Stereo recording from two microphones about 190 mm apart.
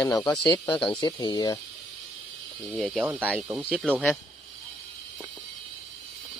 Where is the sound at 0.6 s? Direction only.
25° left (ahead or behind).